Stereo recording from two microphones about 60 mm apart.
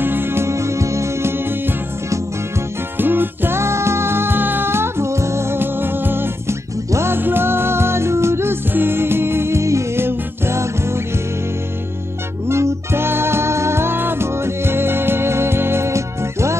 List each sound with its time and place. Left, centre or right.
0.0 s music: right
3.0 s music: right
12.4 s music: right